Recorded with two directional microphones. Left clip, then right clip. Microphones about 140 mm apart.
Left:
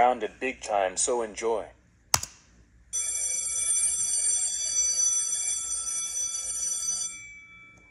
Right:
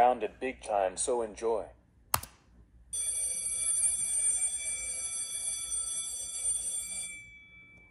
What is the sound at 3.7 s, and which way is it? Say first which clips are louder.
Clock: left 6 dB; 5° left (ahead or behind).